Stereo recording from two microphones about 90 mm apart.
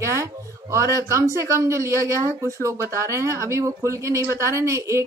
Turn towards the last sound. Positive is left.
turn(degrees=-35)  # may be behind; listen again after turning